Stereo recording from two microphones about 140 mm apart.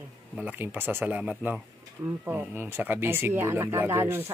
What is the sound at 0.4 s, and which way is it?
Speech, 10° right (ahead or behind).